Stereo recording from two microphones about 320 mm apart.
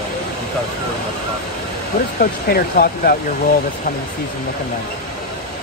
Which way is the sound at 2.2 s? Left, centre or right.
Left.